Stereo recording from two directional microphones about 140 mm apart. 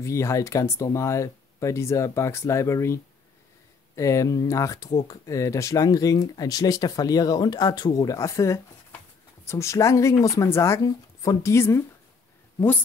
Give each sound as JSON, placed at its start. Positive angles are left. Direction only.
{"t": 0.0, "sound": "speech", "side_deg": 20}